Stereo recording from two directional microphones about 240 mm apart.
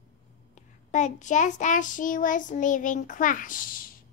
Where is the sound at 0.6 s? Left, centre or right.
Left.